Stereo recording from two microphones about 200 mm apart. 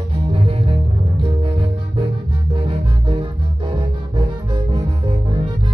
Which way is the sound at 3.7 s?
25° right (ahead or behind).